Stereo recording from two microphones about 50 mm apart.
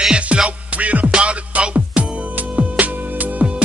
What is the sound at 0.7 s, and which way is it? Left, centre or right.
Music, right.